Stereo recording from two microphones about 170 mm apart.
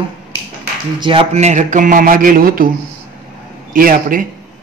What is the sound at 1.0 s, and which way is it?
A man's voice, 35° right (ahead or behind).